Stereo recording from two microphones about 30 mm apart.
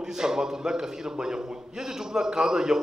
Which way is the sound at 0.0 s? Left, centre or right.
Centre.